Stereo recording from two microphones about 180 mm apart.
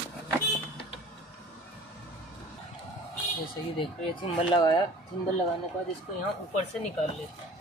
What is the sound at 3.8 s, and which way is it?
Speech, 25° left (ahead or behind).